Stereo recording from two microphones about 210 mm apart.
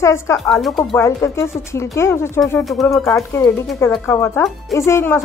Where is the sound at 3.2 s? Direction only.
15° left (ahead or behind).